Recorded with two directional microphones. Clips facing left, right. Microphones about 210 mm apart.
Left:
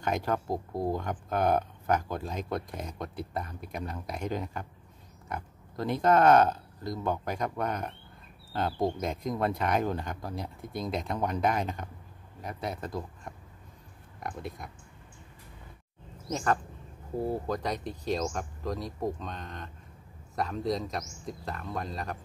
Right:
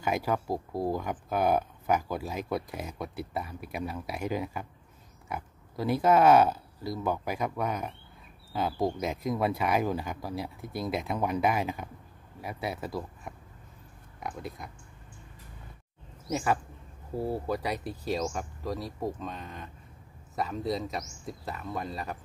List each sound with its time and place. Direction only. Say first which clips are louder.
0.0 s speech: right 1 dB; 5° right (ahead or behind)
16.3 s speech: right 1 dB; 10° right (ahead or behind)